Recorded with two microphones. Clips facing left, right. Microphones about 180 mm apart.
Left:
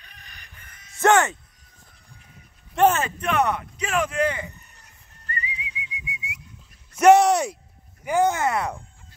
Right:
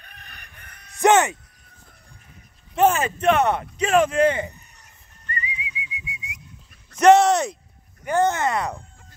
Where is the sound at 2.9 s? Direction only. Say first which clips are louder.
Right 4 dB; 20° right (ahead or behind).